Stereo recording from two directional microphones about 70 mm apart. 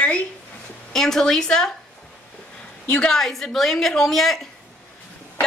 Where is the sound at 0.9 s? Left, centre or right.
Centre.